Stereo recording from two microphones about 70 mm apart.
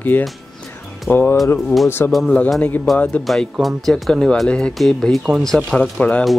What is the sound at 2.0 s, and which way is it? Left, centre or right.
Music, left.